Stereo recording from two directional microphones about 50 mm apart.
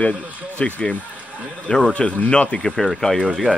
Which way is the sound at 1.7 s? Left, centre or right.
Centre.